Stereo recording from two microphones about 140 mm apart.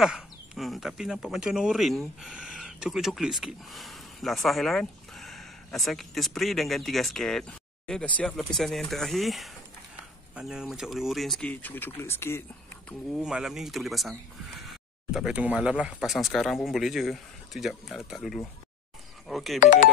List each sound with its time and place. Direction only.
0.0 s speech: centre (ahead or behind)
11.6 s speech: 15° left (ahead or behind)
13.2 s speech: 5° right (ahead or behind)
19.6 s speech: 60° left (ahead or behind)